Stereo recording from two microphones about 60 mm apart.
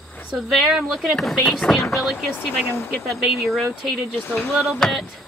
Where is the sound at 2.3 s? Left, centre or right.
Left.